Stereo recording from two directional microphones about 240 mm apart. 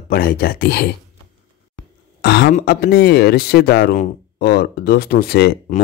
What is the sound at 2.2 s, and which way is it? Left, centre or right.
Speech, left.